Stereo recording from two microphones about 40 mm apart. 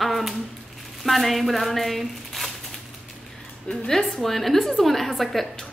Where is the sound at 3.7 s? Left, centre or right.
Centre.